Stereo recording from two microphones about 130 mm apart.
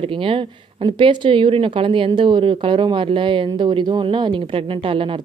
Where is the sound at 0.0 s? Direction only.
45° right (ahead or behind).